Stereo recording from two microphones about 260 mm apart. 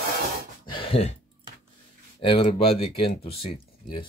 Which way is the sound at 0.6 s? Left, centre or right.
Centre.